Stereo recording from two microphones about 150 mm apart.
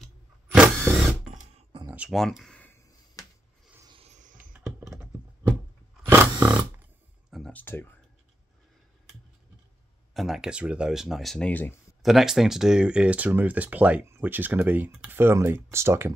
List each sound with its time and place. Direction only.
0.0 s vehicle: centre (ahead or behind)
1.2 s music: 55° right (ahead or behind)
1.9 s a sound: 10° right (ahead or behind)
2.1 s speech: centre (ahead or behind)
3.9 s a sound: 45° right (ahead or behind)
4.6 s computer keyboard: 5° right (ahead or behind)
6.0 s roaring cats: 10° right (ahead or behind)
7.2 s a sound: centre (ahead or behind)
7.5 s speech: 15° left (ahead or behind)
10.1 s speech: centre (ahead or behind)
12.0 s speech: centre (ahead or behind); by 16.2 s 15° right (ahead or behind)